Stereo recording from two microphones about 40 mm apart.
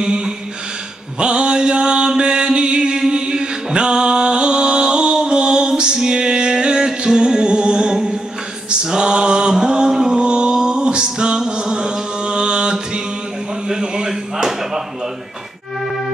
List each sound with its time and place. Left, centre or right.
0.0 s mantra: centre
2.0 s chant: centre
8.9 s mantra: right
13.7 s a sound: centre